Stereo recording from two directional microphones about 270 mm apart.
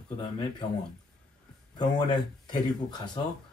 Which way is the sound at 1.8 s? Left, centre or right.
Centre.